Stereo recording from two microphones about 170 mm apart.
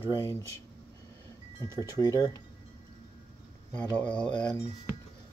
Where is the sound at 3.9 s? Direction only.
5° left (ahead or behind).